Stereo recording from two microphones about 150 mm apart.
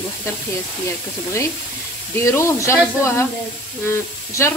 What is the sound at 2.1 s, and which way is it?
Speech, 15° left (ahead or behind).